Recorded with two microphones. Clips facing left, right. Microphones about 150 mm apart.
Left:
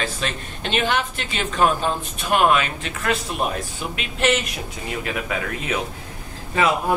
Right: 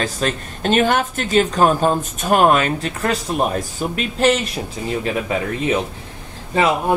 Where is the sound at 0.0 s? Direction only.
40° right (ahead or behind).